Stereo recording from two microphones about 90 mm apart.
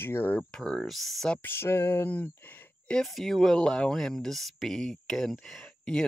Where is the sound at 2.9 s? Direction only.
Centre (ahead or behind).